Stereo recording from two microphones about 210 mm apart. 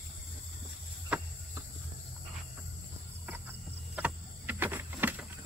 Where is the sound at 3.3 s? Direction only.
10° right (ahead or behind).